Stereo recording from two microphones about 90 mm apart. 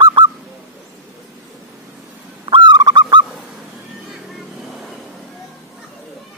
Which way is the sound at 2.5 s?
60° right (ahead or behind).